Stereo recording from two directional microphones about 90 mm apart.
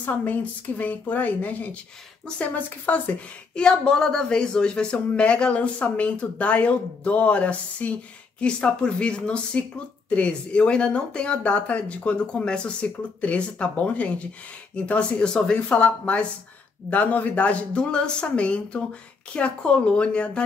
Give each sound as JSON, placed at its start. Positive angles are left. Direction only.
{"t": 0.0, "sound": "speech", "side_deg": 20}